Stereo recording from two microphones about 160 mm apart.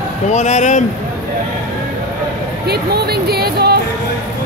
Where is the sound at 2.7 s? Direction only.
80° right.